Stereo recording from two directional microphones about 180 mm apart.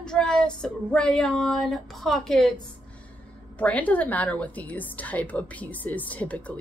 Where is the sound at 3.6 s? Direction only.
10° left (ahead or behind).